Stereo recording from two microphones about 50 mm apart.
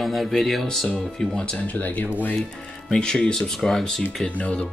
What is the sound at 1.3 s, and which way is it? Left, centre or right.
Speech, centre.